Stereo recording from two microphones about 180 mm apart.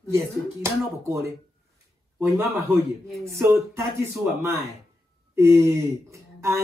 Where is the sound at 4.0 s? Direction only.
15° right (ahead or behind).